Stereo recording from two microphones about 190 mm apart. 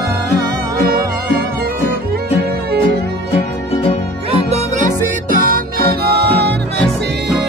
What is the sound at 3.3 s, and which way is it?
Music, 30° left (ahead or behind).